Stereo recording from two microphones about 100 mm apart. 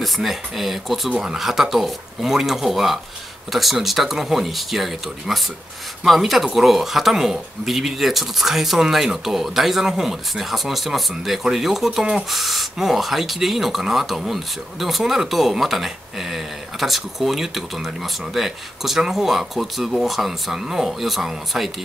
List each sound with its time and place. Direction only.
0.0 s speech: centre (ahead or behind)